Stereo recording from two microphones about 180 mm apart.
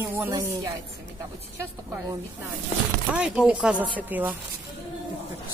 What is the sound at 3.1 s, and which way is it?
A man's voice, 5° right (ahead or behind).